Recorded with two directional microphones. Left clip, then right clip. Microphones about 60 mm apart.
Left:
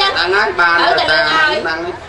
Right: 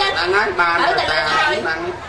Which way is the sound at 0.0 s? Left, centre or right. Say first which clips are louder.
Left 3 dB; left.